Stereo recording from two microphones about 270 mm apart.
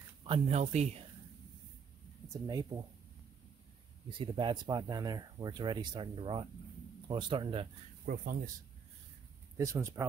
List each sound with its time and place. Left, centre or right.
0.2 s speech: right
2.2 s speech: centre
4.1 s speech: centre
8.0 s speech: right
9.6 s speech: centre